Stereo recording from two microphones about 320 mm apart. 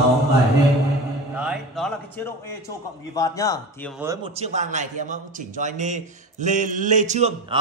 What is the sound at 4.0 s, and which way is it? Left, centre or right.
A man's voice, centre.